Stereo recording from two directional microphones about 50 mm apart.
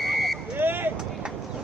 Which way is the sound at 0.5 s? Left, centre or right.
Right.